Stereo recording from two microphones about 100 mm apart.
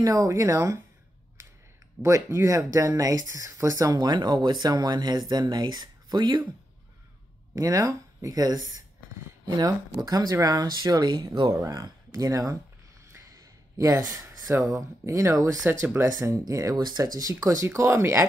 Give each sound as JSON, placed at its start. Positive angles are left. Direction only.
{"t": 0.0, "sound": "speech", "side_deg": -35}
{"t": 2.0, "sound": "speech", "side_deg": -30}
{"t": 7.5, "sound": "speech", "side_deg": -35}
{"t": 13.1, "sound": "a sound", "side_deg": -35}
{"t": 14.4, "sound": "speech", "side_deg": -35}